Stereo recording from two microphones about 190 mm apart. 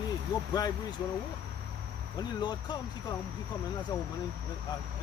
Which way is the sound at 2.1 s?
20° left (ahead or behind).